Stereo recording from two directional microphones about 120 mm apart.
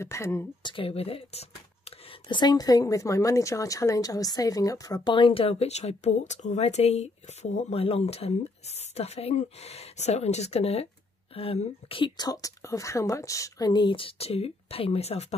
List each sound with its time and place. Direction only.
0.0 s speech: 25° left (ahead or behind)
0.6 s speech: 45° left (ahead or behind)
2.2 s speech: 40° left (ahead or behind)
12.2 s a woman's voice: 30° left (ahead or behind); by 15.2 s 60° left (ahead or behind)